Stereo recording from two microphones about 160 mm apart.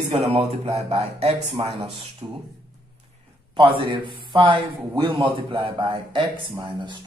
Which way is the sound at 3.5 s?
30° right (ahead or behind).